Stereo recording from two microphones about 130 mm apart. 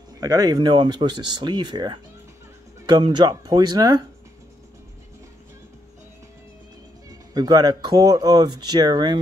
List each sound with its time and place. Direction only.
0.2 s speech: 30° right (ahead or behind)
3.0 s speech: 35° right (ahead or behind)
7.1 s speech: 30° right (ahead or behind)